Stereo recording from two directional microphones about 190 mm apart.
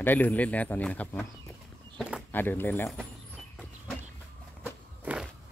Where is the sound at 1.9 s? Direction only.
5° right (ahead or behind).